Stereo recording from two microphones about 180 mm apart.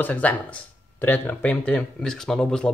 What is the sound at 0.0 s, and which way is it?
Speech, 10° left (ahead or behind).